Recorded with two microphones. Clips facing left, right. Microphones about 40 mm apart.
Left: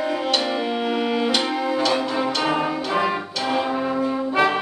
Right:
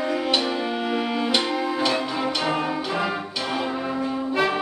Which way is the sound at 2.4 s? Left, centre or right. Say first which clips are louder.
Left 2 dB; centre.